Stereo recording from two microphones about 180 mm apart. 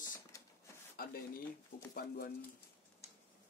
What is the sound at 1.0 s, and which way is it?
Speech, 55° left (ahead or behind).